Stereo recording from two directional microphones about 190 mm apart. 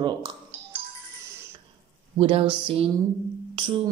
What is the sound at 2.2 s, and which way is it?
Speech, 30° right (ahead or behind).